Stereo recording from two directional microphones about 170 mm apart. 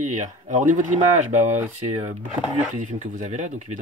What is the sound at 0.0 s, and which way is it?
Speech, 45° right (ahead or behind).